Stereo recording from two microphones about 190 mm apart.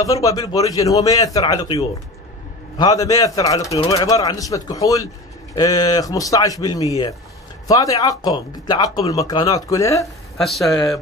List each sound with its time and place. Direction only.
0.0 s speech: 20° left (ahead or behind)
2.8 s speech: 20° left (ahead or behind)
10.3 s speech: centre (ahead or behind)